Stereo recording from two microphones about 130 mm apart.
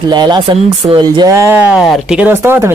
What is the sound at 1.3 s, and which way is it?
Speech, 20° right (ahead or behind).